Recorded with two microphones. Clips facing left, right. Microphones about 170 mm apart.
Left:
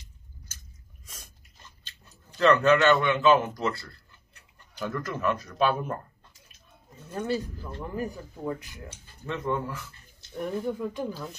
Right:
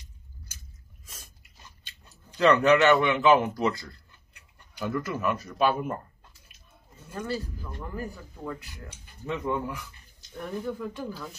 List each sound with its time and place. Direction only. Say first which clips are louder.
1.9 s speech: even; 15° right (ahead or behind)
7.8 s speech: left 4 dB; 20° left (ahead or behind)
9.0 s speech: right 1 dB; 15° right (ahead or behind)
10.3 s speech: left 3 dB; 20° left (ahead or behind)